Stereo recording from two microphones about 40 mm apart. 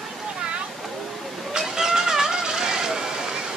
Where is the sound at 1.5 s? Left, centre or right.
Centre.